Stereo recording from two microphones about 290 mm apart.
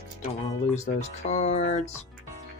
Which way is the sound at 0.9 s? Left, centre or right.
Left.